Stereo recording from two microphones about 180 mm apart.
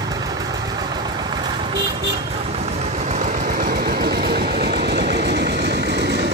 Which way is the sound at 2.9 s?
40° right (ahead or behind).